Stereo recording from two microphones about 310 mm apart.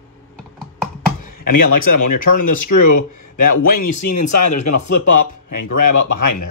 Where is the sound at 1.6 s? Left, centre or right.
Left.